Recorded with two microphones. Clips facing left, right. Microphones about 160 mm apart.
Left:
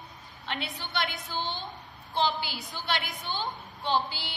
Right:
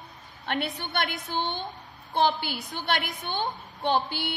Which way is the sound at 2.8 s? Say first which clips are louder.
Right 3 dB; 55° right (ahead or behind).